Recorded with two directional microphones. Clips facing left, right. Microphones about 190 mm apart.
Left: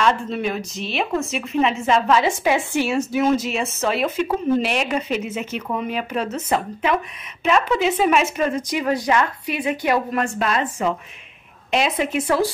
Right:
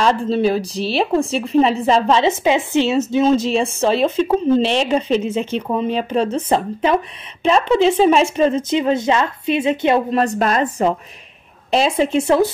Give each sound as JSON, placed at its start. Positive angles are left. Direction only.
{"t": 0.0, "sound": "a woman's voice", "side_deg": -30}
{"t": 10.2, "sound": "a woman's voice", "side_deg": -40}